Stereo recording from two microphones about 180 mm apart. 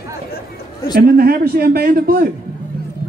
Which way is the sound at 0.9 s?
55° right (ahead or behind).